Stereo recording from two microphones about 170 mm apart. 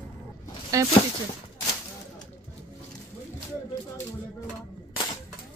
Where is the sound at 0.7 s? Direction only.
20° right (ahead or behind).